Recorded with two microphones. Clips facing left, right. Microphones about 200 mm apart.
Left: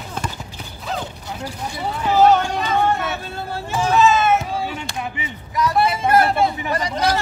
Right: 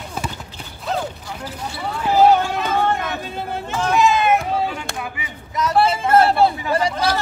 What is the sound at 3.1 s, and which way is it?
Vehicle, 15° right (ahead or behind).